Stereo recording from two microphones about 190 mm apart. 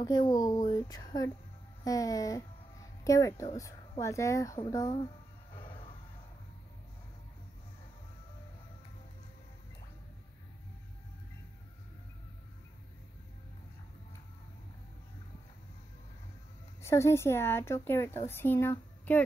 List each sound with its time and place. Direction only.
0.0 s a woman's voice: 20° left (ahead or behind)
5.6 s a sound: 25° left (ahead or behind)
16.8 s a woman's voice: 15° left (ahead or behind)